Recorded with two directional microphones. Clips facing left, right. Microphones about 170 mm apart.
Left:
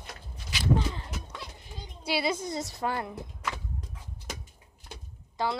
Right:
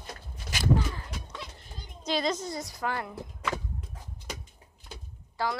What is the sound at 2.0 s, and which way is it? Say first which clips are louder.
Speech: even; 10° left (ahead or behind).